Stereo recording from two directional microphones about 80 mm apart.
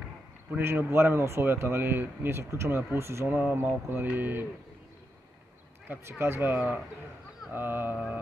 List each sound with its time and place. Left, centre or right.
0.6 s speech: right
4.1 s mantra: right
5.9 s speech: right
7.5 s mantra: right